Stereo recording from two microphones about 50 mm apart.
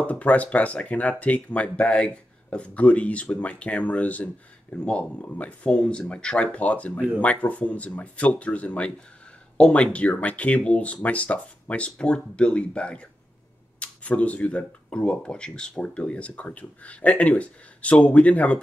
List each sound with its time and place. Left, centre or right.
0.0 s speech: left